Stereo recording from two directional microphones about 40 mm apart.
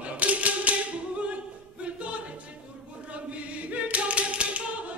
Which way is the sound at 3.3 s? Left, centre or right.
Right.